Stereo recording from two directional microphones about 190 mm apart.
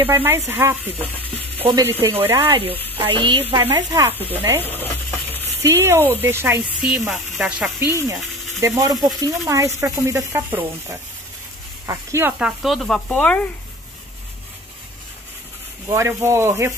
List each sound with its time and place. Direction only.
0.0 s speech: 10° right (ahead or behind)
2.5 s speech: 30° right (ahead or behind)
4.6 s speech: 10° left (ahead or behind)
5.6 s speech: 15° right (ahead or behind)
8.5 s speech: 15° right (ahead or behind); by 13.5 s 5° left (ahead or behind)
15.9 s speech: 15° right (ahead or behind)